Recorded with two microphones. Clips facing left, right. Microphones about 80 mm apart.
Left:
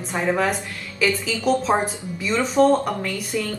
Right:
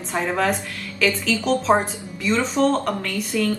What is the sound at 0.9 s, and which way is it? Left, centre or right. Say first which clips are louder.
Speech: even; centre.